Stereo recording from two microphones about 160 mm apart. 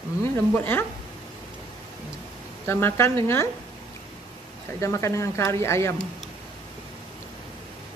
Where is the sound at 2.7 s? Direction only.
15° left (ahead or behind).